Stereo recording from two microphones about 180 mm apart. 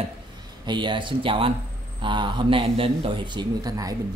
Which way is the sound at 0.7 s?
25° right (ahead or behind).